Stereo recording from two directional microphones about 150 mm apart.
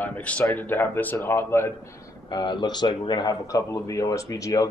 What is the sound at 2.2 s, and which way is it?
Speech, 30° left (ahead or behind).